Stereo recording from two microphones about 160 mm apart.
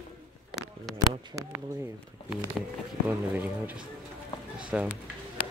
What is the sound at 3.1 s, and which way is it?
Speech, 10° right (ahead or behind).